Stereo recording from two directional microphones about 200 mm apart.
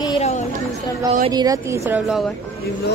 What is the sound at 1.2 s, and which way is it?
Speech, 20° right (ahead or behind).